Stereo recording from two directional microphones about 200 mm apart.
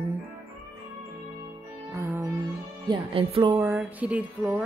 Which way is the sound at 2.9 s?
25° right (ahead or behind).